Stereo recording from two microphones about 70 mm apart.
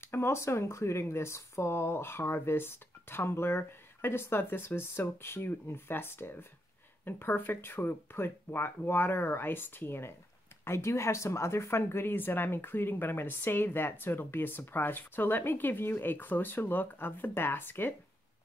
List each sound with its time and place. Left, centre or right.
0.0 s speech: left